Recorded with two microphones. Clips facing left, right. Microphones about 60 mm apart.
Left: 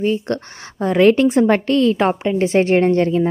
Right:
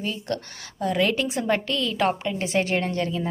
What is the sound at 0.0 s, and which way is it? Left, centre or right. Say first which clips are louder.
A woman's voice: left 10 dB; left.